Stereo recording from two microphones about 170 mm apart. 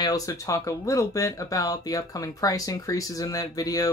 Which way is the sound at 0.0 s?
20° left (ahead or behind).